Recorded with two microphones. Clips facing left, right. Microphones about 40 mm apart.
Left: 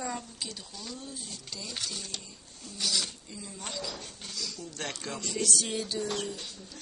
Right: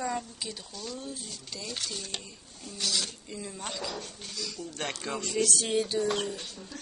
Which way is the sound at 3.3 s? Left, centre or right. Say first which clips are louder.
Right 4 dB; right.